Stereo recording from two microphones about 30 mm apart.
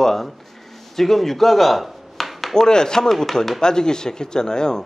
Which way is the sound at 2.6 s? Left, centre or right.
Left.